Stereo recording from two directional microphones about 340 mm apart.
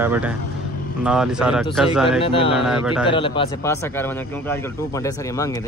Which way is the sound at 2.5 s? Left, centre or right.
Centre.